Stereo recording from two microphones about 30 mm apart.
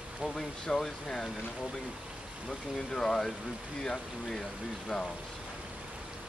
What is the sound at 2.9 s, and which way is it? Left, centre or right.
Speech, centre.